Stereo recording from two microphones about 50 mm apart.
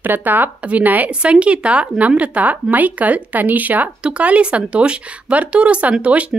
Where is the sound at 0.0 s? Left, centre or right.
Right.